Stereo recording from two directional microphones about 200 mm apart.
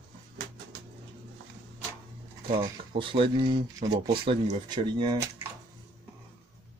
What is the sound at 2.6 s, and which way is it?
Speech, 25° right (ahead or behind).